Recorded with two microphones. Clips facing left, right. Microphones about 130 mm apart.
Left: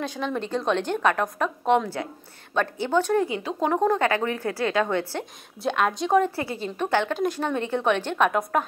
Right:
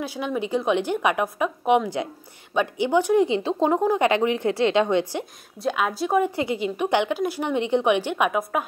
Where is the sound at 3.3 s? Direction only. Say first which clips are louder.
Right 4 dB; 25° right (ahead or behind).